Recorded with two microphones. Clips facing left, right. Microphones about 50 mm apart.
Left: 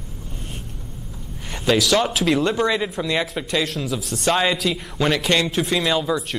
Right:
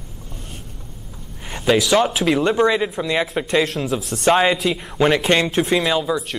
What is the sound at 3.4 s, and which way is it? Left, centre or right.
Speech, right.